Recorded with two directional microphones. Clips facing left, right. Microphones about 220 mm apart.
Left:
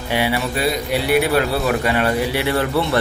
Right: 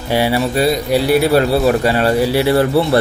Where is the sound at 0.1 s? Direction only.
35° right (ahead or behind).